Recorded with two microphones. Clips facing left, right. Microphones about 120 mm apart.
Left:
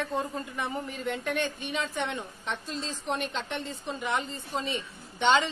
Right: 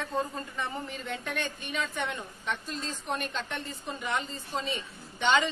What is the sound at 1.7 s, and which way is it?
A woman's voice, 20° left (ahead or behind).